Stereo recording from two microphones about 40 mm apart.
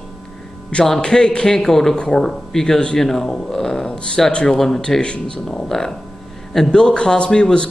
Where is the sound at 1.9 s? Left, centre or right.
Left.